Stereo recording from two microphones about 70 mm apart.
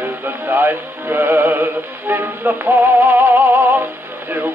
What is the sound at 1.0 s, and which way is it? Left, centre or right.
Music, right.